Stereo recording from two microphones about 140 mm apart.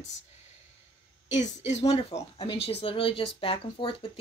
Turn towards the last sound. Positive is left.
turn(degrees=40)  # may be behind; listen again after turning